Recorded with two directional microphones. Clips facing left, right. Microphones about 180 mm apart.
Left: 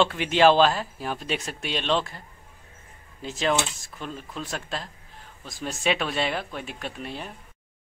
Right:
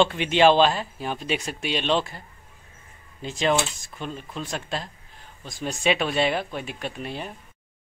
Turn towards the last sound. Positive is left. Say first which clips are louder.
# right 2 dB
turn(degrees=0)  # may be behind; listen again after turning